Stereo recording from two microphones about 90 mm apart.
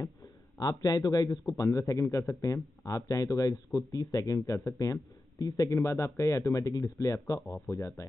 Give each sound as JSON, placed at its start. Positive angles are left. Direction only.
{"t": 0.0, "sound": "a man's voice", "side_deg": 45}